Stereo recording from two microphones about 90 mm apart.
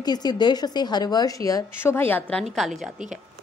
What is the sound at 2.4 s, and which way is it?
Speech, centre (ahead or behind).